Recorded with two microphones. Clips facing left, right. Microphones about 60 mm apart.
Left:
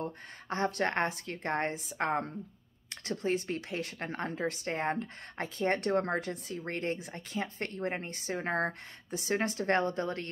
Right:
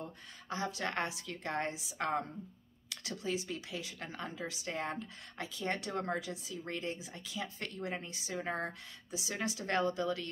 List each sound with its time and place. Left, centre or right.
0.0 s speech: left